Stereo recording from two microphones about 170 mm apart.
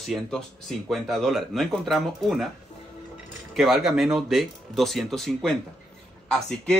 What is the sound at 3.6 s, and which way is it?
Speech, centre (ahead or behind).